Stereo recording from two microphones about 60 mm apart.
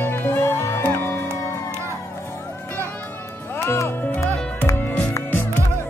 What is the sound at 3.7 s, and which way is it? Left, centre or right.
Music, left.